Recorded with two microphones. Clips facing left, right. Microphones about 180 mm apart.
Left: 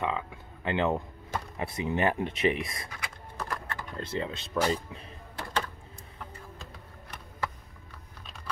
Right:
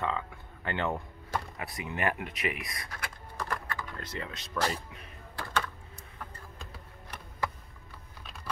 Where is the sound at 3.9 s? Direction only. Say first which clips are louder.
Left 6 dB; 30° left (ahead or behind).